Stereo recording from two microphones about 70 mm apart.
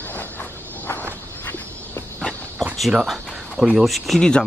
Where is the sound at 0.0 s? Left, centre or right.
Left.